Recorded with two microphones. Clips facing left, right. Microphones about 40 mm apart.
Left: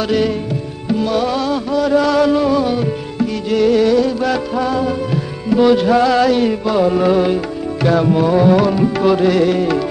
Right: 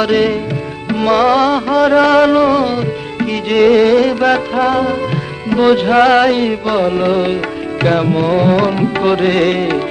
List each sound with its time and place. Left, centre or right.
0.0 s music: right
0.8 s music: right
3.2 s music: right
7.8 s music: right